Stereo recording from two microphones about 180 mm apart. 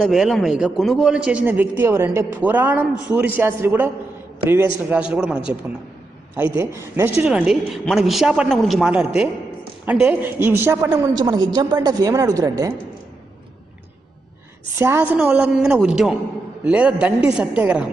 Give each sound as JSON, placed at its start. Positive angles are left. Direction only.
{"t": 0.0, "sound": "a man's voice", "side_deg": 0}
{"t": 14.8, "sound": "a man's voice", "side_deg": -15}